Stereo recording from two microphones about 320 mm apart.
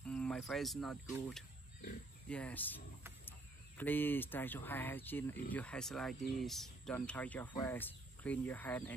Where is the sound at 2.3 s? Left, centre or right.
Centre.